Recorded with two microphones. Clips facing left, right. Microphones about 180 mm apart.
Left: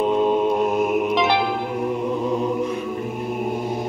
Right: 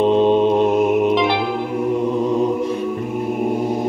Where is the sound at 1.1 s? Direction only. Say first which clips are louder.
Right 2 dB; 45° left (ahead or behind).